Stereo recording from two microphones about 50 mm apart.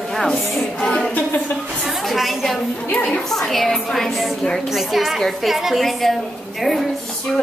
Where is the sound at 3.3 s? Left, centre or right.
Centre.